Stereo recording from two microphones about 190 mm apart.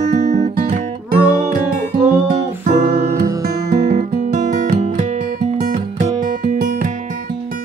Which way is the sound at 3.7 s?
40° right (ahead or behind).